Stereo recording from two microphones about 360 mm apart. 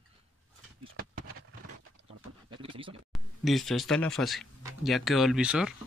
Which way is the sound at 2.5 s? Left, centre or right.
Centre.